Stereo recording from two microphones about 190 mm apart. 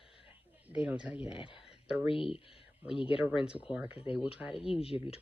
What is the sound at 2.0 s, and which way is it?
Speech, 30° left (ahead or behind).